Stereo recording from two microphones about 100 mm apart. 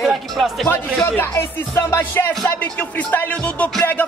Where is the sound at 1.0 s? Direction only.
20° left (ahead or behind).